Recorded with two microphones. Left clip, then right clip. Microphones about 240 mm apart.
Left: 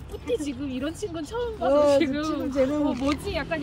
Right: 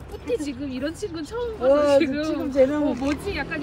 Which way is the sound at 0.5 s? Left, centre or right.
Left.